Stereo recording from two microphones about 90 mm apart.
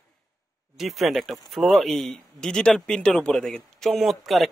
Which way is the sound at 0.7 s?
Centre (ahead or behind).